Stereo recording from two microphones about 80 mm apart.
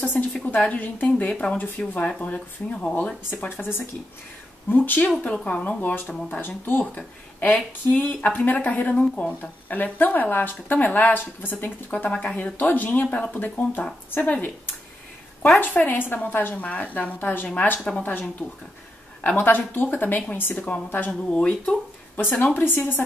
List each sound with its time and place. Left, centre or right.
0.0 s speech: left
15.6 s speech: left
19.2 s speech: left
21.1 s speech: centre
22.6 s speech: left